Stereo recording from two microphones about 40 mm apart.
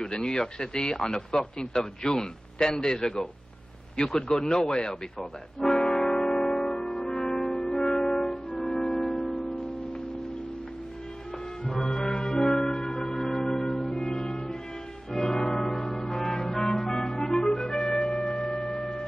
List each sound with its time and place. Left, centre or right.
0.0 s a man's voice: centre
5.6 s music: centre
7.1 s brass instrument: centre
8.8 s music: centre
11.7 s music: centre
12.7 s music: centre
14.0 s music: centre
16.5 s brass instrument: centre
17.2 s music: centre